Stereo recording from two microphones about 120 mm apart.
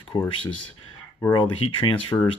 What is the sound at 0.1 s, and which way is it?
Speech, 45° left (ahead or behind).